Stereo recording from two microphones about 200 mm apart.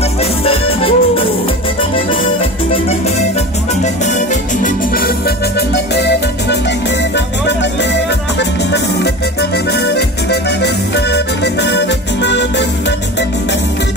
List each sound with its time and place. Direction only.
0.2 s accordion: 30° left (ahead or behind)
3.8 s music: 35° left (ahead or behind)
5.6 s music: 60° left (ahead or behind)
8.4 s music: 55° left (ahead or behind)